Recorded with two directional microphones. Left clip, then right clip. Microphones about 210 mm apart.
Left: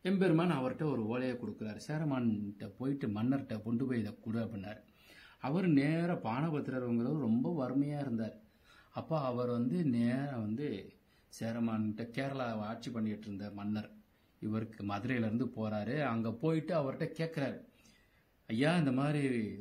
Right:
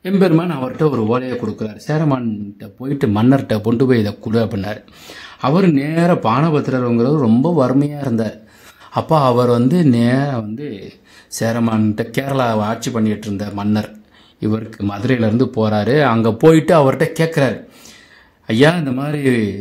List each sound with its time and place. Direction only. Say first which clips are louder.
0.0 s speech: right 17 dB; 45° right (ahead or behind)
18.5 s speech: right 19 dB; 45° right (ahead or behind)